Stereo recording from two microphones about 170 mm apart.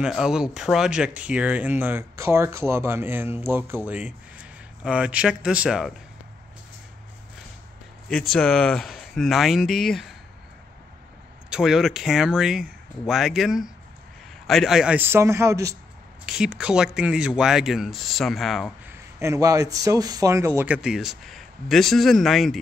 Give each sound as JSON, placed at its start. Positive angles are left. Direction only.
{"t": 0.0, "sound": "speech", "side_deg": -5}
{"t": 8.1, "sound": "speech", "side_deg": 0}
{"t": 11.5, "sound": "speech", "side_deg": 0}
{"t": 16.3, "sound": "speech", "side_deg": -5}
{"t": 18.9, "sound": "speech", "side_deg": -15}